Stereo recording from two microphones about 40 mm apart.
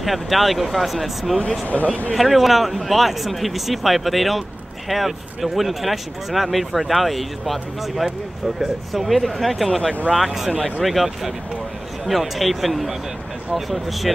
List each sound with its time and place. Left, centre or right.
0.0 s speech: centre
1.7 s speech: left
2.1 s speech: centre
10.1 s speech: centre